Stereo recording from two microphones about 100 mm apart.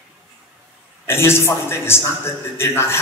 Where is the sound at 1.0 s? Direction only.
25° left (ahead or behind).